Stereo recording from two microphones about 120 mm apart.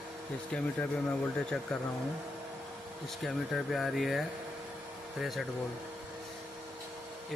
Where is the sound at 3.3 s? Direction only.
Centre (ahead or behind).